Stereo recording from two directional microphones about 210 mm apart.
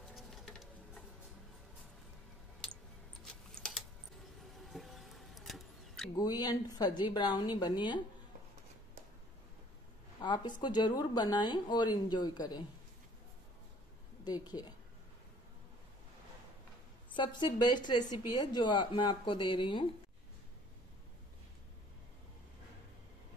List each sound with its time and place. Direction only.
0.1 s insect: centre (ahead or behind)
3.3 s a sound: centre (ahead or behind)
4.7 s music: centre (ahead or behind)
6.1 s a woman's voice: 20° left (ahead or behind)
10.2 s a woman's voice: 20° left (ahead or behind)
14.2 s a woman's voice: 20° left (ahead or behind)
17.1 s a woman's voice: 20° left (ahead or behind)